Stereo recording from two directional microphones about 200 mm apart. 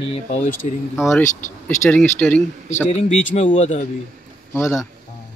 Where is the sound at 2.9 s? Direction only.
35° left (ahead or behind).